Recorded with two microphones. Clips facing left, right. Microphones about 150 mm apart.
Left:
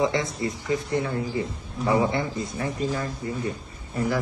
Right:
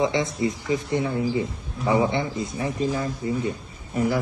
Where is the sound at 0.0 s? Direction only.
25° right (ahead or behind).